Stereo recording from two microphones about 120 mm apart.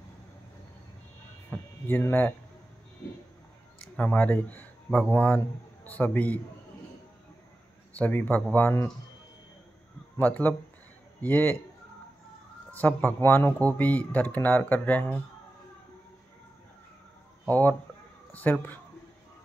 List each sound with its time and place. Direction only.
1.5 s speech: 15° left (ahead or behind)
3.9 s speech: 10° left (ahead or behind)
7.9 s speech: 15° left (ahead or behind)
10.1 s a man's voice: 15° left (ahead or behind)
12.7 s speech: 15° left (ahead or behind)
17.5 s speech: 15° left (ahead or behind)